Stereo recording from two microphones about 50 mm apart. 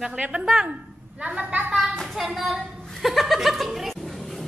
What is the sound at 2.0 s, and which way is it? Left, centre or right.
Speech, centre.